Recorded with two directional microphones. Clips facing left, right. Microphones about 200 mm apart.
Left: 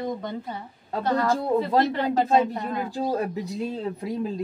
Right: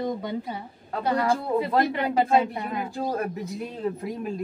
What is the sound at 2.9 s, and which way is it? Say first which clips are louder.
Speech: left 2 dB; 20° left (ahead or behind).